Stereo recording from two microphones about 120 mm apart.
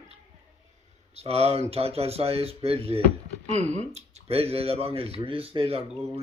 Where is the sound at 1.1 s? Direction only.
60° right (ahead or behind).